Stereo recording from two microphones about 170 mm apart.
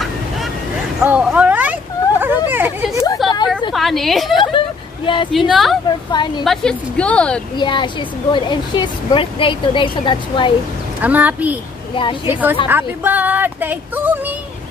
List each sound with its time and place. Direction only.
1.0 s a sound: 10° right (ahead or behind)
3.2 s a sound: centre (ahead or behind)
3.7 s a woman's voice: centre (ahead or behind)
4.4 s vehicle: 30° left (ahead or behind)
5.5 s a woman's voice: centre (ahead or behind)
6.1 s speech: 25° left (ahead or behind)
6.4 s a woman's voice: 5° left (ahead or behind)
7.5 s speech: 25° left (ahead or behind)
11.0 s speech: 10° right (ahead or behind)
11.9 s a woman's voice: 30° left (ahead or behind)
12.3 s speech: 10° right (ahead or behind)